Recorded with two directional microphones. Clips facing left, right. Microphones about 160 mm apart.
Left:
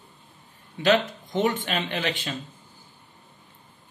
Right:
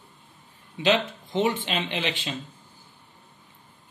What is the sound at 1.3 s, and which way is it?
Speech, 25° right (ahead or behind).